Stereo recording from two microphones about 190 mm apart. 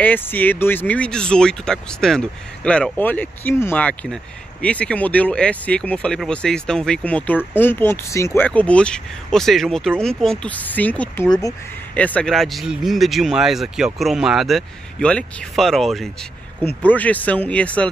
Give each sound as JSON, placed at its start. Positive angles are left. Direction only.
{"t": 0.0, "sound": "speech", "side_deg": 10}
{"t": 11.2, "sound": "speech", "side_deg": 20}
{"t": 11.9, "sound": "speech", "side_deg": 10}